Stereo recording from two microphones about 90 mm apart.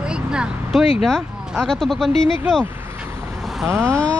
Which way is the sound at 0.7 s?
5° left (ahead or behind).